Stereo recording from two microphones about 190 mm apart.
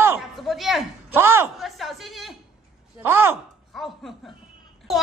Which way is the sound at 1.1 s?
10° right (ahead or behind).